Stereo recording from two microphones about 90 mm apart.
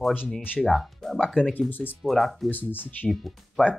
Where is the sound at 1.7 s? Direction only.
20° left (ahead or behind).